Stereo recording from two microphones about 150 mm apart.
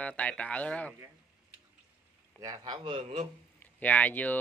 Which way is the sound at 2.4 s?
25° right (ahead or behind).